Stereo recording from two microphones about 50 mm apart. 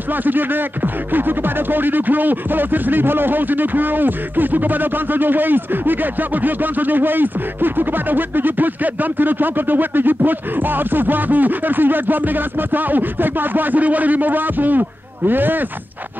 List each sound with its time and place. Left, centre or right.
0.1 s speech: right